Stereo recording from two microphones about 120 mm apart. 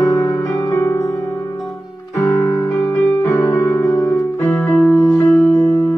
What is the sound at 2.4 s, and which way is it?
Music, 25° left (ahead or behind).